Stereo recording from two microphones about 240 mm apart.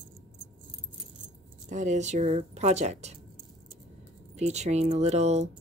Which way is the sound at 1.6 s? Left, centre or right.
Right.